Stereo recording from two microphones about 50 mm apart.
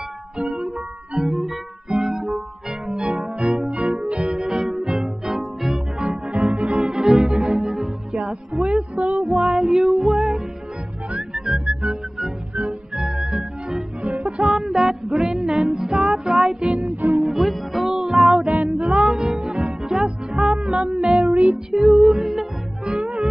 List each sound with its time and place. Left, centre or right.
0.4 s music: centre
1.9 s guitar: centre
3.0 s music: centre
6.0 s music: centre
6.8 s music: centre
17.2 s music: centre
18.4 s music: centre
20.6 s music: centre